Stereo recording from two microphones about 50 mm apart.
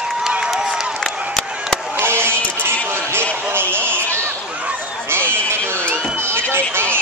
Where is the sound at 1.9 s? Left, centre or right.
Right.